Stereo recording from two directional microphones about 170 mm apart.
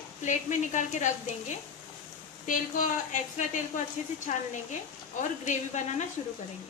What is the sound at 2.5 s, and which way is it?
A woman's voice, 50° left (ahead or behind).